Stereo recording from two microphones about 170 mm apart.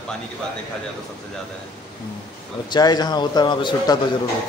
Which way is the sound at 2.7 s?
25° left (ahead or behind).